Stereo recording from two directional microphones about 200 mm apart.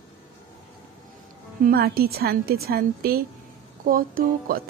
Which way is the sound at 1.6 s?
50° right (ahead or behind).